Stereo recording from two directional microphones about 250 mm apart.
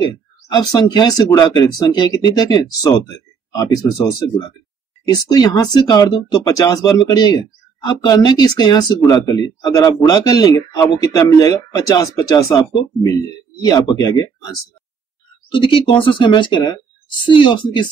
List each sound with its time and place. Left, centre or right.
0.0 s speech: centre
5.1 s speech: centre
15.5 s speech: left